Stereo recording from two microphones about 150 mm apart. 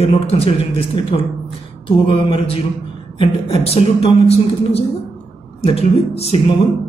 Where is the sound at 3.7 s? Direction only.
40° left (ahead or behind).